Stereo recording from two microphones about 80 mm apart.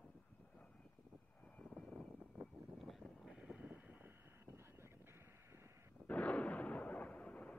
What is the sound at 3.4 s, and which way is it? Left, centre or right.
Vehicle, centre.